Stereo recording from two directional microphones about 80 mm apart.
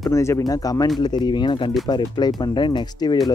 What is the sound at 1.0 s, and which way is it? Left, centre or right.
Speech, left.